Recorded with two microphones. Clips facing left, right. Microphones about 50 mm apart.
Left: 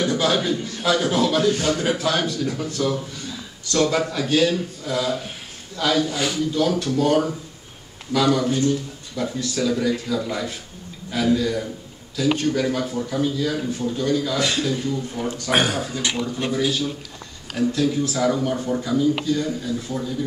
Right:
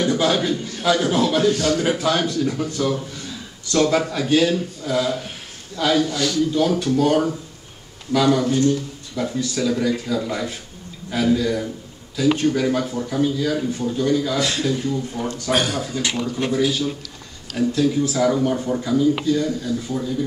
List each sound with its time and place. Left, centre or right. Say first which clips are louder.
0.0 s a sound: right 2 dB; centre
1.1 s a man's voice: right 1 dB; centre
1.5 s a man's voice: right 2 dB; left
1.8 s a man's voice: right 2 dB; centre
6.0 s speech: right 2 dB; centre
6.5 s a man's voice: right 2 dB; centre
15.5 s speech: left 1 dB; centre
16.5 s a man's voice: right 2 dB; centre